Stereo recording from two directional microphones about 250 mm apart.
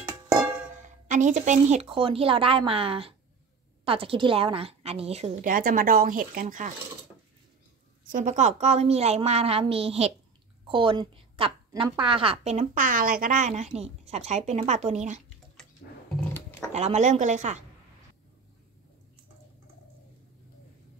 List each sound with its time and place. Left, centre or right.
0.8 s a woman's voice: right
8.1 s a woman's voice: right
15.8 s dog: left
16.7 s a woman's voice: right